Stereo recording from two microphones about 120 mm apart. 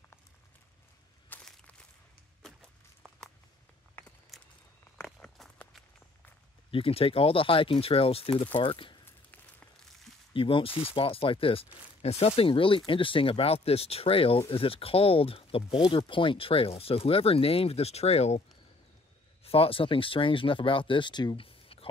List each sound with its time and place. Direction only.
1.3 s walk: 10° left (ahead or behind)
4.0 s a sound: 15° left (ahead or behind)
5.0 s walk: centre (ahead or behind)
6.7 s speech: 50° left (ahead or behind)
9.0 s a sound: 15° left (ahead or behind)
10.3 s speech: 50° left (ahead or behind)
10.7 s speech: 10° right (ahead or behind)
11.0 s speech: 50° left (ahead or behind)
19.4 s speech: 55° left (ahead or behind)